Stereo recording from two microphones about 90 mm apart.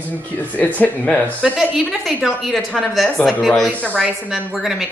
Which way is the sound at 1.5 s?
Centre (ahead or behind).